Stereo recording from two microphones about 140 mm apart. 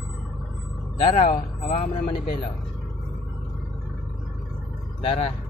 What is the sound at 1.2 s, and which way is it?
Speech, 60° left (ahead or behind).